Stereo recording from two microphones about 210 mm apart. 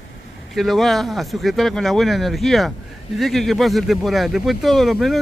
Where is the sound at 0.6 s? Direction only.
Centre (ahead or behind).